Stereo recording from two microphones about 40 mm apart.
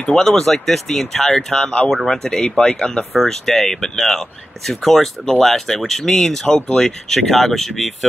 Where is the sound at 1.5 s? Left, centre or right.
Left.